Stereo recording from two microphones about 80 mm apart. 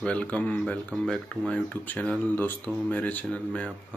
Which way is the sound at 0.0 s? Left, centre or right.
Centre.